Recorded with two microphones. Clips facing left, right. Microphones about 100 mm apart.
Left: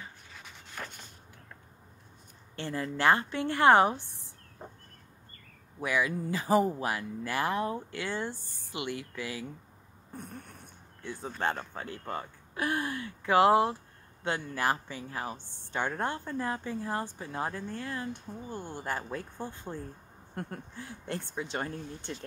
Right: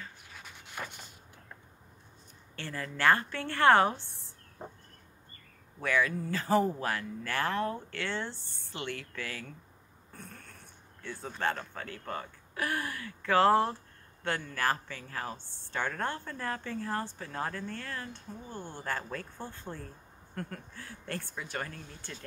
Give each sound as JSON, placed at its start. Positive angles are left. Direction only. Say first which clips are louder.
{"t": 0.3, "sound": "a sound", "louder": "even", "side_deg": -5}
{"t": 2.5, "sound": "a woman's voice", "louder": "left 5 dB", "side_deg": 20}
{"t": 5.8, "sound": "a woman's voice", "louder": "even", "side_deg": 15}